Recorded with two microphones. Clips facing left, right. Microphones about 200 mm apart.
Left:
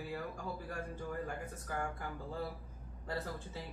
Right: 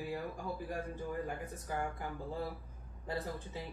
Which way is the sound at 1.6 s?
15° right (ahead or behind).